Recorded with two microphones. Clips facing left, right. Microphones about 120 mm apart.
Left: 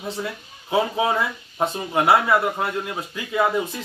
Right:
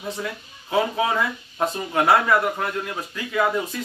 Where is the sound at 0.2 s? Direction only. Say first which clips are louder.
Left 1 dB; 15° left (ahead or behind).